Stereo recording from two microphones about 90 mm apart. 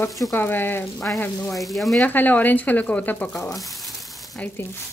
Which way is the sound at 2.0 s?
20° left (ahead or behind).